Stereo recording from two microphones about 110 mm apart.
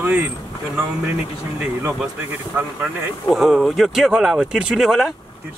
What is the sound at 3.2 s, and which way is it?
Speech, centre (ahead or behind).